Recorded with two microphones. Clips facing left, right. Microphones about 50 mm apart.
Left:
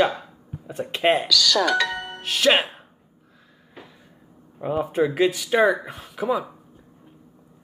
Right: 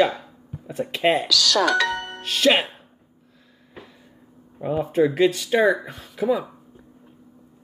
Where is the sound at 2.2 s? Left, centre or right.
Left.